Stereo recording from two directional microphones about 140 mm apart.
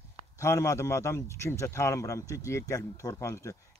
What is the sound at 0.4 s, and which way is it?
Speech, 20° left (ahead or behind).